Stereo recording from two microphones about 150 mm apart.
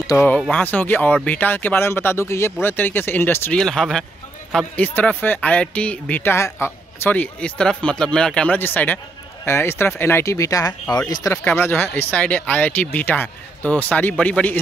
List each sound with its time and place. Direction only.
0.0 s speech: 20° left (ahead or behind)
3.6 s speech: 5° left (ahead or behind)